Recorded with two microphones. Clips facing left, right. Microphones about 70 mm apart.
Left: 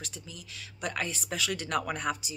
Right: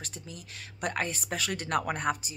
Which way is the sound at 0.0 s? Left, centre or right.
Right.